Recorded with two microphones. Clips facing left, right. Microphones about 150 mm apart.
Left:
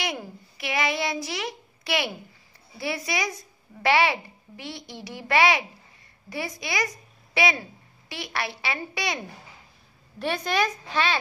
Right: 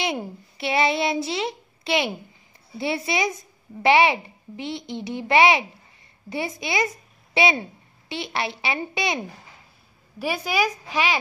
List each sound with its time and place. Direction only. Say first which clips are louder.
0.0 s a child's voice: right 5 dB; 25° right (ahead or behind)
10.1 s a woman's voice: right 1 dB; 10° right (ahead or behind)